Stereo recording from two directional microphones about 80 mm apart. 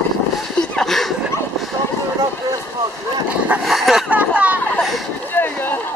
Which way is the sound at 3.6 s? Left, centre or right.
Centre.